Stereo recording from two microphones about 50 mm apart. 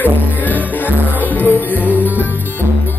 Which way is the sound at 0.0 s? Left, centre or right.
Left.